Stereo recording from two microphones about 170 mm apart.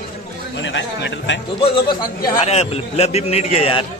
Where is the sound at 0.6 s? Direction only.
90° left.